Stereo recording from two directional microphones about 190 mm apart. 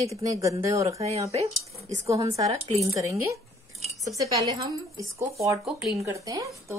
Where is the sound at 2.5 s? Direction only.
30° right (ahead or behind).